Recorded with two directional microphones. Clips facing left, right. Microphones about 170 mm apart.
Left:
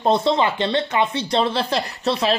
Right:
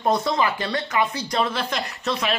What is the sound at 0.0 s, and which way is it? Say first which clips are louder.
Speech: left 3 dB; 25° left (ahead or behind).